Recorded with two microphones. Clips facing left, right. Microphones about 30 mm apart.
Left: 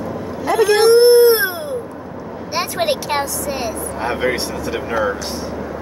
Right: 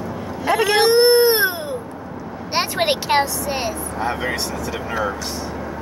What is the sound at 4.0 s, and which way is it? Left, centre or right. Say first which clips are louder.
Speech: left 4 dB; left.